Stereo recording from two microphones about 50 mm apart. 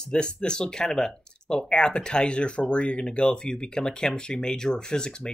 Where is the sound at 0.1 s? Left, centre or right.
Centre.